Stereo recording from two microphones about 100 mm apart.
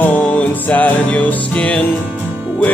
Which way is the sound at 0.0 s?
15° left (ahead or behind).